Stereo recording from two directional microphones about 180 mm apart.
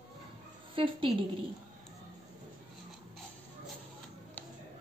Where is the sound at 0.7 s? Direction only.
30° right (ahead or behind).